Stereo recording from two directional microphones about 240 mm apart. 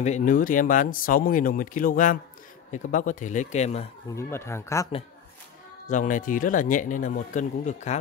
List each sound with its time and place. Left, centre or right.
0.0 s speech: left
4.1 s speech: centre
5.9 s speech: left